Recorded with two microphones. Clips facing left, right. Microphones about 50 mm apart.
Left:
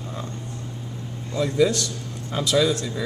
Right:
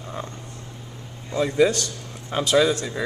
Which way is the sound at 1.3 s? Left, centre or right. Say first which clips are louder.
Right 1 dB; right.